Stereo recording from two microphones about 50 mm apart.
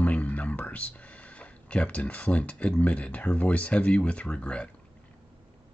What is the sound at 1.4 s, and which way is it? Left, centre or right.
Speech, left.